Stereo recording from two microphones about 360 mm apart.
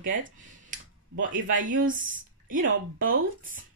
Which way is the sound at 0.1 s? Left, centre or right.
Right.